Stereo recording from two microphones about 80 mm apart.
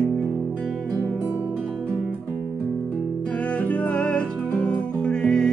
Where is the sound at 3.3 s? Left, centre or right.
Centre.